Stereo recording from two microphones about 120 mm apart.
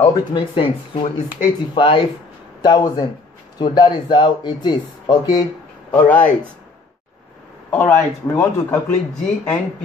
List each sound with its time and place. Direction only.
0.0 s speech: 35° left (ahead or behind)
5.9 s speech: 10° left (ahead or behind)
7.7 s speech: 15° left (ahead or behind)